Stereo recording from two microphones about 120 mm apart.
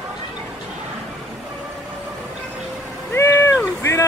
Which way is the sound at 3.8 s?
25° left (ahead or behind).